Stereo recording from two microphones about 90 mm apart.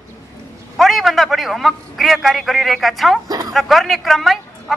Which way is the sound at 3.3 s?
45° right (ahead or behind).